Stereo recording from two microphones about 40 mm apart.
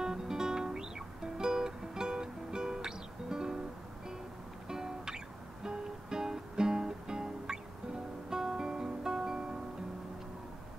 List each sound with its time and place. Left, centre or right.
0.0 s music: centre
4.6 s music: centre